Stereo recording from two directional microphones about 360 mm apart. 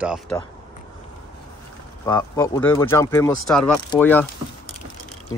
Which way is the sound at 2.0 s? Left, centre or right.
Centre.